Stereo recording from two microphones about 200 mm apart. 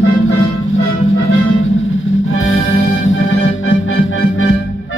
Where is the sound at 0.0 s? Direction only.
85° left.